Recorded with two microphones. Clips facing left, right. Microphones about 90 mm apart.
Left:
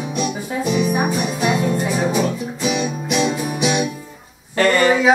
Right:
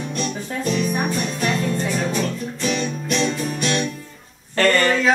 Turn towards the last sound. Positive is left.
turn(degrees=10)  # may be behind; listen again after turning